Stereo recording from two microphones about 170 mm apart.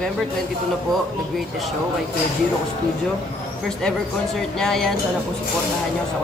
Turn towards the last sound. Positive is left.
turn(degrees=0)  # may be behind; listen again after turning